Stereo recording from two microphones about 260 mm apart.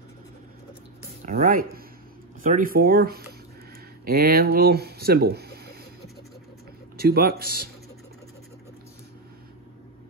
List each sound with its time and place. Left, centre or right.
1.2 s speech: right
7.0 s speech: right